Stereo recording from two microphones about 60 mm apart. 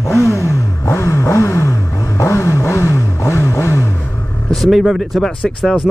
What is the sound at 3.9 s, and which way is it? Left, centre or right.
Vehicle, left.